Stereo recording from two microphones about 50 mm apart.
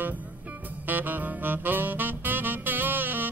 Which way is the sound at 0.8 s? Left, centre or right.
Right.